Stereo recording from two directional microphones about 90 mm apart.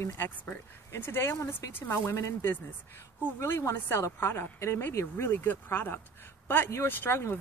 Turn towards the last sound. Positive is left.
turn(degrees=25)  # may be behind; listen again after turning